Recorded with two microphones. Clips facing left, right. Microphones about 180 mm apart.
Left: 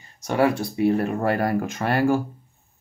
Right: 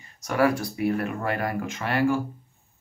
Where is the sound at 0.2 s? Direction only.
25° left (ahead or behind); by 2.1 s 40° left (ahead or behind).